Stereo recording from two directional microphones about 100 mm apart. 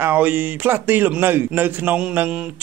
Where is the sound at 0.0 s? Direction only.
20° right (ahead or behind).